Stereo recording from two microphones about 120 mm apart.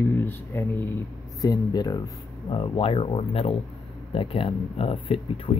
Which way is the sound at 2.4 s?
45° left (ahead or behind).